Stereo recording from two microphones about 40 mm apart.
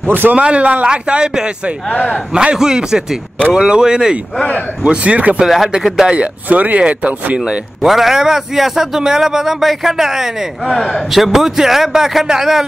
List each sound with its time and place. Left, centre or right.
0.1 s speech: right
0.4 s speech: right
1.9 s speech: left
2.3 s a man's voice: centre
4.8 s speech: right
5.8 s a man's voice: centre
6.5 s speech: right
7.8 s a man's voice: centre
10.7 s a man's voice: centre
11.1 s a man's voice: centre